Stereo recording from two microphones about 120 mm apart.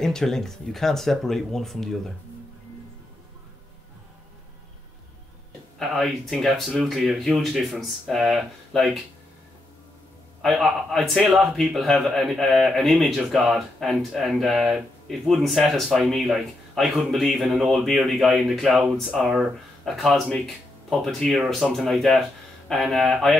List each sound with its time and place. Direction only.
0.0 s a man's voice: 5° left (ahead or behind)
5.8 s a man's voice: centre (ahead or behind)
10.4 s a man's voice: centre (ahead or behind)